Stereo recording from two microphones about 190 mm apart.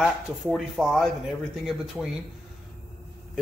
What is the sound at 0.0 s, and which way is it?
A man's voice, centre (ahead or behind).